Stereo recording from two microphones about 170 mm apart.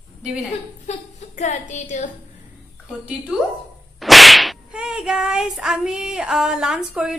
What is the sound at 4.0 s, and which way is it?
Whip, centre (ahead or behind).